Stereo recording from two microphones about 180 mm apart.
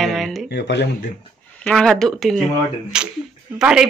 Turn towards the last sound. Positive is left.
turn(degrees=-5)  # may be behind; listen again after turning